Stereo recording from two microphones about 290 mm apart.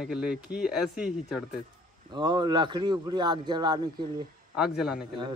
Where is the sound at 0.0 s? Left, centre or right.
Centre.